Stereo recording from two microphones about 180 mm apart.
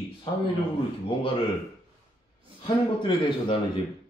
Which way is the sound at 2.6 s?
25° left (ahead or behind).